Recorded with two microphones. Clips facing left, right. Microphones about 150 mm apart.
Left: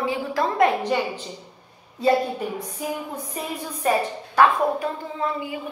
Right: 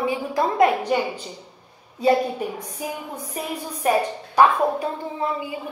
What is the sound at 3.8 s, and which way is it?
A woman's voice, 15° right (ahead or behind).